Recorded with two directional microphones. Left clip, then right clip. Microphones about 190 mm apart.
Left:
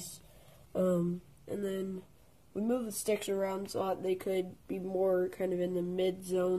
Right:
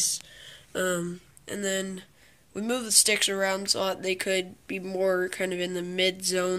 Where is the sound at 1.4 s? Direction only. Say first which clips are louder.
Right 7 dB; 15° right (ahead or behind).